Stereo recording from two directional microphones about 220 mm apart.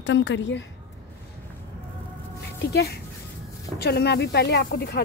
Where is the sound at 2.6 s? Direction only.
45° left (ahead or behind).